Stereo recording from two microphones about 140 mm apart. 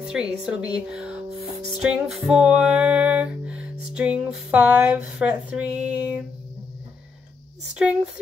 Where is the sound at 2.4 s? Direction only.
5° right (ahead or behind).